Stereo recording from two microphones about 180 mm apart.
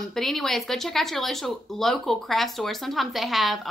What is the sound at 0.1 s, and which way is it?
Speech, centre (ahead or behind).